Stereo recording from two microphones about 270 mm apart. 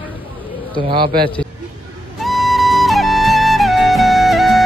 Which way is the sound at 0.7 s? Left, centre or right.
Centre.